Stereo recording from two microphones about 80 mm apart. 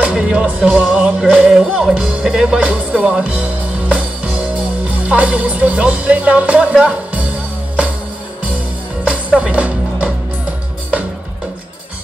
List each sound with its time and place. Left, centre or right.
0.0 s music: centre
3.9 s speech: centre
9.0 s music: centre